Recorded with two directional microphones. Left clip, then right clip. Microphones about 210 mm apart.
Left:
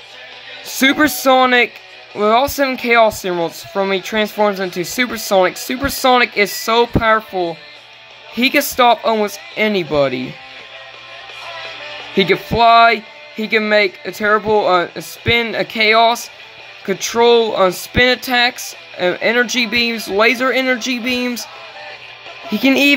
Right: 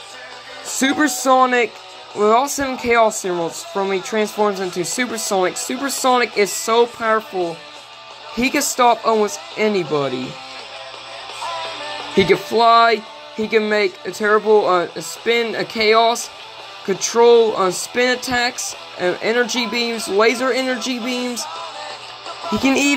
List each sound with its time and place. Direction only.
0.7 s speech: 25° left (ahead or behind)
11.4 s music: 30° right (ahead or behind)
12.2 s speech: 15° left (ahead or behind)
22.6 s speech: 20° left (ahead or behind)